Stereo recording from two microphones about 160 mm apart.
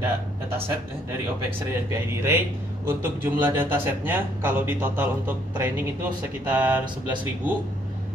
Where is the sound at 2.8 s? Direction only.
15° right (ahead or behind).